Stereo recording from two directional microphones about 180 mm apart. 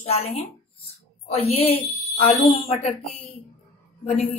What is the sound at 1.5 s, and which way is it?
Speech, 35° left (ahead or behind).